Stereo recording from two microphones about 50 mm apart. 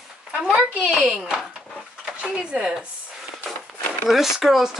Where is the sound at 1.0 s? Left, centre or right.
Centre.